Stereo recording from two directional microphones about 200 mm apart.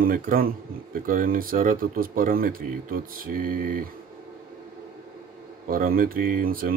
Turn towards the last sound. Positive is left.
turn(degrees=-45)  # may be behind; listen again after turning